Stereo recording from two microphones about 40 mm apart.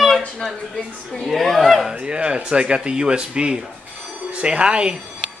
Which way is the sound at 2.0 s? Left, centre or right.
Right.